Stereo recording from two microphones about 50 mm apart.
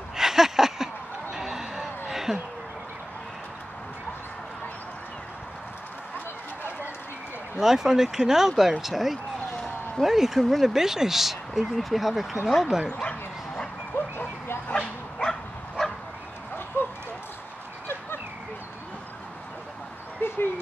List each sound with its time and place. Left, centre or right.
0.1 s a sound: centre
7.5 s speech: centre
13.0 s bow-wow: left
13.9 s bow-wow: left
14.7 s bow-wow: centre
16.8 s dog: left
20.2 s a sound: left